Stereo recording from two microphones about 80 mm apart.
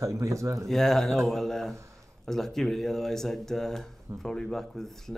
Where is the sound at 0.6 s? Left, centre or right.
Centre.